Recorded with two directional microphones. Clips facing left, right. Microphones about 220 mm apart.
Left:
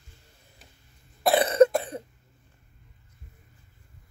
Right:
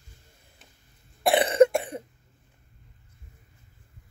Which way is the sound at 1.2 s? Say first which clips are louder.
Even; 25° right (ahead or behind).